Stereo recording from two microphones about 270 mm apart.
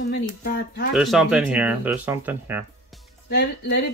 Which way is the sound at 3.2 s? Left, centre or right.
Left.